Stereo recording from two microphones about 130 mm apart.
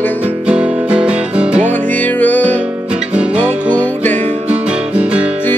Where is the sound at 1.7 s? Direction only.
15° left (ahead or behind).